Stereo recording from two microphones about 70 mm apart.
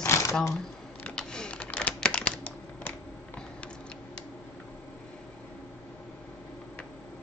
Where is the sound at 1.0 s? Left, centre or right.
Centre.